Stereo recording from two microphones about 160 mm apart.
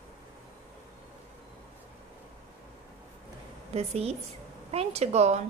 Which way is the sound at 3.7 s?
40° right (ahead or behind).